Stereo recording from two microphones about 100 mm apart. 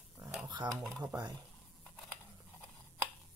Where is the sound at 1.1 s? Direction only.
40° right (ahead or behind).